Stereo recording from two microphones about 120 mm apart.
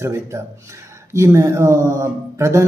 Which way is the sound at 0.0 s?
25° right (ahead or behind).